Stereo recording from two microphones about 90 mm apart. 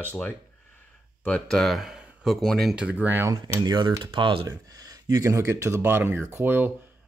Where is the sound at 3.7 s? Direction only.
55° right (ahead or behind).